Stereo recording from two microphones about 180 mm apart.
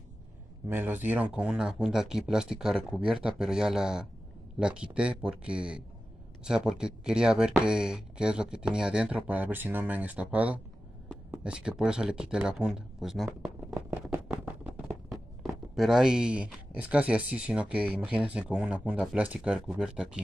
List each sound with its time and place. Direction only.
0.7 s speech: 10° right (ahead or behind)
13.7 s a sound: 15° right (ahead or behind)
15.7 s speech: centre (ahead or behind)